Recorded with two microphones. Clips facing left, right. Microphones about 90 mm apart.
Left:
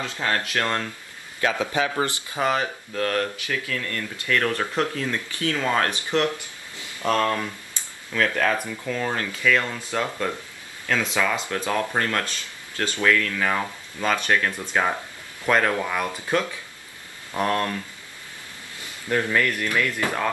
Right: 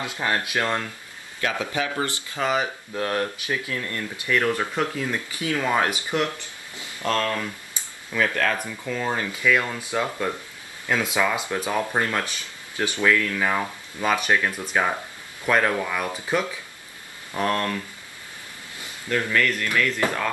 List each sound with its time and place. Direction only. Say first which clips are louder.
0.0 s speech: even; 15° right (ahead or behind)
1.7 s speech: left 2 dB; 20° left (ahead or behind)
2.5 s speech: even; 15° right (ahead or behind)
7.0 s speech: left 2 dB; 15° left (ahead or behind)
7.7 s a sound: right 1 dB; 10° right (ahead or behind)
8.8 s speech: right 2 dB; 10° right (ahead or behind)
17.4 s speech: left 1 dB; 10° left (ahead or behind)
19.0 s speech: even; 20° left (ahead or behind)